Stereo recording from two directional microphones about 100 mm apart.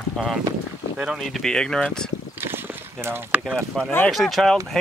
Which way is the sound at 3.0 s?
20° right (ahead or behind).